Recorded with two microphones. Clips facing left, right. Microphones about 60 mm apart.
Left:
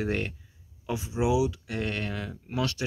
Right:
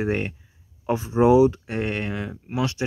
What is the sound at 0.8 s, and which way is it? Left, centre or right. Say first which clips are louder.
Speech: right 9 dB; right.